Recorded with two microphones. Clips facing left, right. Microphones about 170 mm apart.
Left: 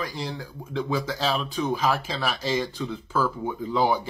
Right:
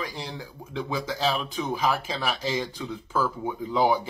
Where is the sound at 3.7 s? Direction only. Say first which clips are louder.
Right 1 dB; 15° right (ahead or behind).